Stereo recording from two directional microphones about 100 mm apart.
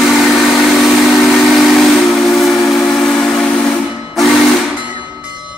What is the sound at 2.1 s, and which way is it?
Steam whistle, centre (ahead or behind).